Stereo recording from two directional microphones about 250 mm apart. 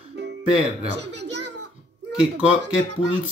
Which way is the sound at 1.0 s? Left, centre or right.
Right.